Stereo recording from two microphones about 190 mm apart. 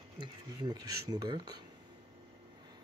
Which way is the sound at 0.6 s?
20° right (ahead or behind).